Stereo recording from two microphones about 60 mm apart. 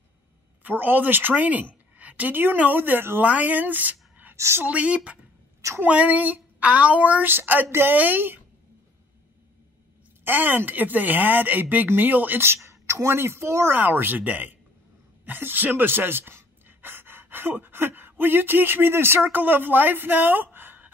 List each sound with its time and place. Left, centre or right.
0.7 s speech: right
3.3 s speech: right
4.4 s a woman's voice: right
4.6 s speech: right
7.2 s speech: right
10.2 s speech: right
12.6 s speech: right
13.7 s a woman's voice: right